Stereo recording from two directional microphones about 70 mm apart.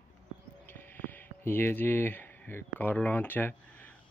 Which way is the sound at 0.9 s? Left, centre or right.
Left.